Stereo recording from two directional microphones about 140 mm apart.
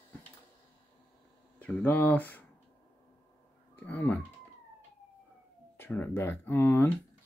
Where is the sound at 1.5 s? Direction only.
10° left (ahead or behind).